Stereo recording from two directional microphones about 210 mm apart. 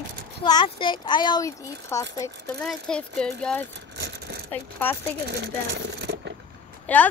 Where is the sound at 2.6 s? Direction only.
5° left (ahead or behind).